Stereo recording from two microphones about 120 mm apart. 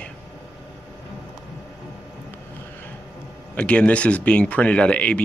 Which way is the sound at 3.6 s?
10° left (ahead or behind).